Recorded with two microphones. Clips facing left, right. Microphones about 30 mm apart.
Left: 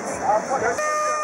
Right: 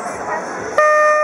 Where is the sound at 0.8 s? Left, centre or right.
Right.